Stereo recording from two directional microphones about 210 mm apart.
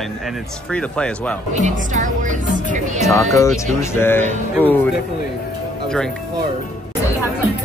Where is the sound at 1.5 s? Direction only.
35° right (ahead or behind).